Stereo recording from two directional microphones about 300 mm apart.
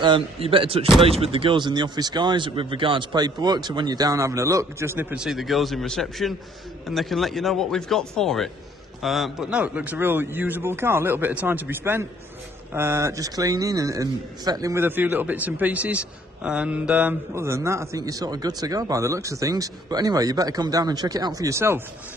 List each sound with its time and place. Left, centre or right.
0.0 s a man's voice: centre